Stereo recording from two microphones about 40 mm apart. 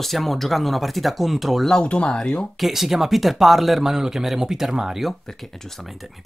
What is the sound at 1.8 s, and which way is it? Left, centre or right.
Speech, left.